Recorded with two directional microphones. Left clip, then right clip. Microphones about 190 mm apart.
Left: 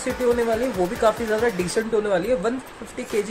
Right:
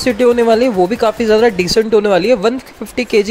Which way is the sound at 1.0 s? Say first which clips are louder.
Right 8 dB; 40° right (ahead or behind).